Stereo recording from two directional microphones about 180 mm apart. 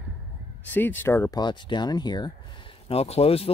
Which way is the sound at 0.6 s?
10° left (ahead or behind).